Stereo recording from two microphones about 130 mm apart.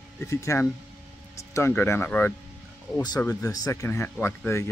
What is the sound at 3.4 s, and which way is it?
Speech, 30° left (ahead or behind).